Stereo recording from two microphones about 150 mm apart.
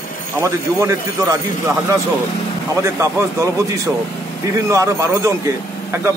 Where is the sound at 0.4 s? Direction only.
20° right (ahead or behind).